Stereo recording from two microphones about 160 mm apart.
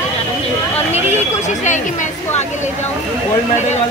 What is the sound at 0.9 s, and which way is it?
Speech, 45° left (ahead or behind).